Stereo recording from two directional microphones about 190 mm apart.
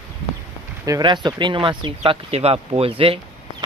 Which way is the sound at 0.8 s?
20° right (ahead or behind).